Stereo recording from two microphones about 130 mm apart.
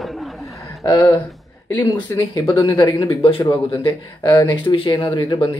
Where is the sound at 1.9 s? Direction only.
40° left (ahead or behind).